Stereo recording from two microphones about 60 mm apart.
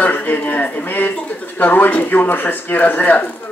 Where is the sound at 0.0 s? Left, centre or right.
Left.